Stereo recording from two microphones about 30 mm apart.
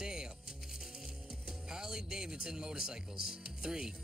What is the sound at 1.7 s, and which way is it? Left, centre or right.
Speech, centre.